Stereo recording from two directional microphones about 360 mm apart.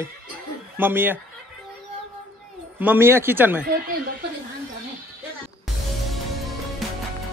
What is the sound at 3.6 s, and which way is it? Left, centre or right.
Speech, right.